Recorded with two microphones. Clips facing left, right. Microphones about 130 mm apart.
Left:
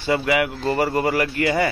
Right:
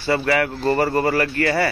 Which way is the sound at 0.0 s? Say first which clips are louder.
Right 1 dB; 15° left (ahead or behind).